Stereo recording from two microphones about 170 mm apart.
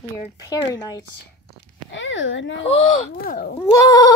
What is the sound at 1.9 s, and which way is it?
Speech, 90° left.